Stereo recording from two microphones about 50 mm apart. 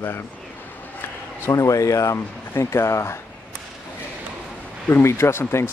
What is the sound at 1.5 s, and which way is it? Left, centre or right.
Speech, left.